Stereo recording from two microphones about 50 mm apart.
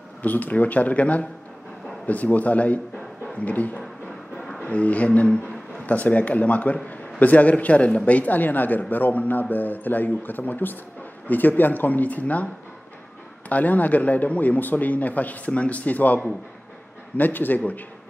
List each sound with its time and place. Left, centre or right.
0.2 s a man's voice: left
13.5 s a man's voice: left
17.2 s a man's voice: left